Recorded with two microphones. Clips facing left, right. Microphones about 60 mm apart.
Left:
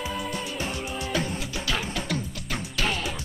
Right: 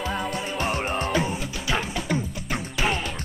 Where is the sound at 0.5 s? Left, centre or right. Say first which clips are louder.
Right 6 dB; right.